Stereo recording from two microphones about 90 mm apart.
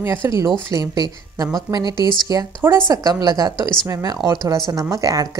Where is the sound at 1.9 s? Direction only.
55° left (ahead or behind).